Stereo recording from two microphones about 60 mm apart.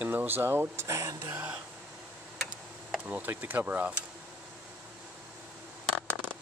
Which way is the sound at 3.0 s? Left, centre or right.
Right.